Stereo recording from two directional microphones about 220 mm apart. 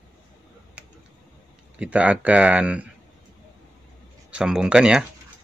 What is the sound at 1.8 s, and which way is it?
Speech, 5° right (ahead or behind).